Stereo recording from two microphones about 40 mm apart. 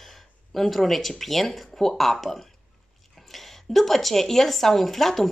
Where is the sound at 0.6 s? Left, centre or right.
Centre.